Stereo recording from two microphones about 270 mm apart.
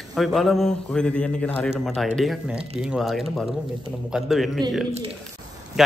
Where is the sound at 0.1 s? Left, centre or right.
Centre.